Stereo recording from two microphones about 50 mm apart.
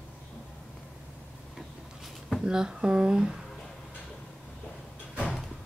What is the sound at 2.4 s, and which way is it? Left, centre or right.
Speech, centre.